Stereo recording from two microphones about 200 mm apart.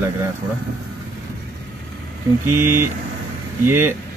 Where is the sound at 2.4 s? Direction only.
10° right (ahead or behind).